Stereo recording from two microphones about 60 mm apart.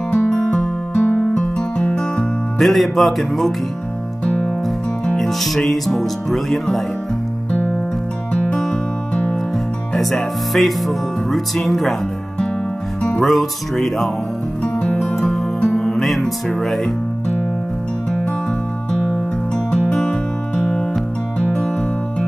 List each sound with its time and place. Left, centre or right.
0.1 s music: centre
2.6 s speech: centre
4.2 s music: left
5.0 s music: centre
5.6 s speech: centre
8.3 s music: centre
9.9 s speech: centre
13.2 s speech: centre
14.6 s music: centre
16.6 s speech: centre
19.5 s music: centre